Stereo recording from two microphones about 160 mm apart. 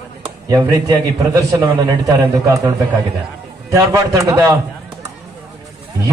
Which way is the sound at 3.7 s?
20° right (ahead or behind).